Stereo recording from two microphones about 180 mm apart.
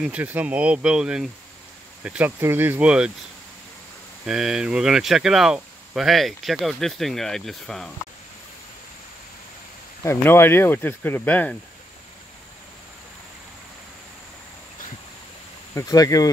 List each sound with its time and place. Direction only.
0.0 s speech: 10° right (ahead or behind)
4.3 s speech: 5° right (ahead or behind)
10.0 s speech: 15° left (ahead or behind)
15.7 s speech: 20° left (ahead or behind)